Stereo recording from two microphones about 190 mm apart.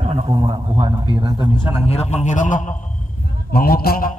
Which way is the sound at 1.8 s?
35° left (ahead or behind).